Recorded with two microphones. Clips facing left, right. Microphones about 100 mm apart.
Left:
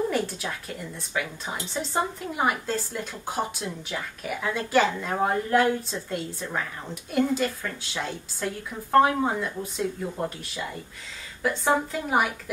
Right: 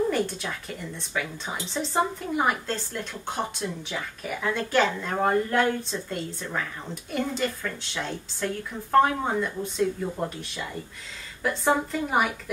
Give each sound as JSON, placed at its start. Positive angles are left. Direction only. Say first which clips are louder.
{"t": 0.1, "sound": "speech", "louder": "right 1 dB", "side_deg": 5}
{"t": 11.4, "sound": "speech", "louder": "even", "side_deg": 0}